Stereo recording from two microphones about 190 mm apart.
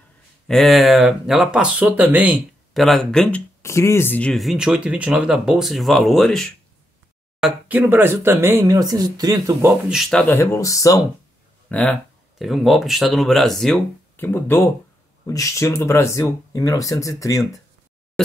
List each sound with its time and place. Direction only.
0.5 s speech: centre (ahead or behind); by 9.8 s 15° right (ahead or behind)
9.8 s speech: centre (ahead or behind)
10.3 s speech: 15° left (ahead or behind)
11.7 s speech: 5° left (ahead or behind)